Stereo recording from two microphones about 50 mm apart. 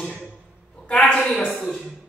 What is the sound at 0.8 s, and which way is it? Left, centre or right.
Speech, left.